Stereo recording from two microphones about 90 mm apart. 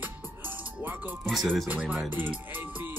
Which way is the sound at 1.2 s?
5° left (ahead or behind).